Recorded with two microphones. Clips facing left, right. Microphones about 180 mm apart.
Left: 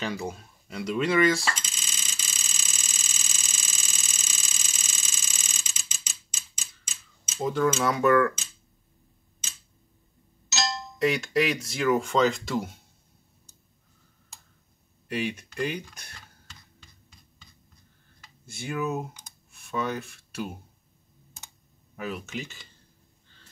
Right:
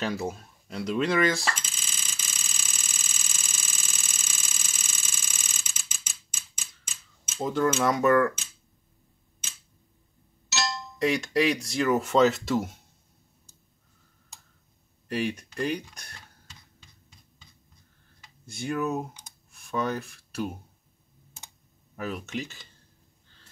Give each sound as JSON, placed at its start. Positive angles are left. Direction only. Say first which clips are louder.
{"t": 0.0, "sound": "speech", "louder": "right 2 dB", "side_deg": 0}
{"t": 1.5, "sound": "a sound", "louder": "even", "side_deg": -55}
{"t": 7.3, "sound": "speech", "louder": "even", "side_deg": 0}
{"t": 11.0, "sound": "speech", "louder": "even", "side_deg": 0}
{"t": 15.0, "sound": "speech", "louder": "right 1 dB", "side_deg": 0}
{"t": 18.5, "sound": "speech", "louder": "right 1 dB", "side_deg": 0}
{"t": 21.9, "sound": "speech", "louder": "right 1 dB", "side_deg": 0}